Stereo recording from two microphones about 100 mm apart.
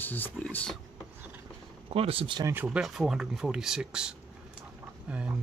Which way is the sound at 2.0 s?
70° right (ahead or behind).